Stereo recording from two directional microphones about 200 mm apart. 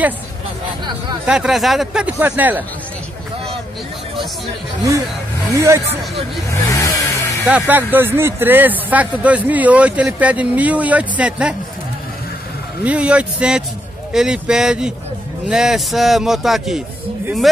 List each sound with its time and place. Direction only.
1.2 s a man's voice: 5° right (ahead or behind)
5.5 s speech: 15° right (ahead or behind)
6.7 s a sound: 15° left (ahead or behind)
7.4 s speech: 10° right (ahead or behind)
12.8 s a man's voice: 5° right (ahead or behind)